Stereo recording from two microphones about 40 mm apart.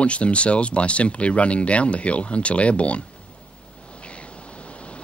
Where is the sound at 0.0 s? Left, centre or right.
Left.